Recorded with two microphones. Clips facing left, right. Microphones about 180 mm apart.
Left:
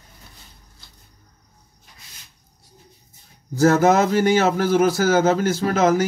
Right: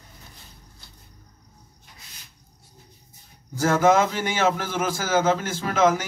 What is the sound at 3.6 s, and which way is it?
A man's voice, 45° left (ahead or behind).